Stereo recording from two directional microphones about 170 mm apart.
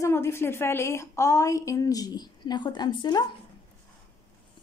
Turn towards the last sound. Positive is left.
turn(degrees=25)  # may be behind; listen again after turning